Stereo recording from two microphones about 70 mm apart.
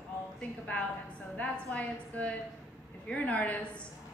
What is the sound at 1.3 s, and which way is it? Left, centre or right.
A woman's voice, left.